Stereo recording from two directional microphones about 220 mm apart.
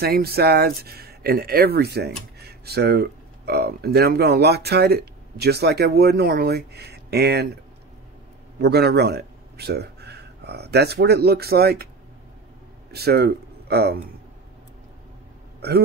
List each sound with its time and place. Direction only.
0.0 s speech: 45° right (ahead or behind)
8.5 s speech: 45° right (ahead or behind)
12.9 s speech: 45° right (ahead or behind)